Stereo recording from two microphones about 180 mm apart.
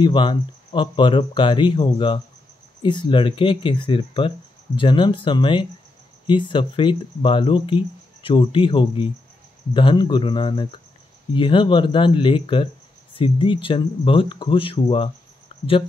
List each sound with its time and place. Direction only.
0.0 s speech: 25° left (ahead or behind)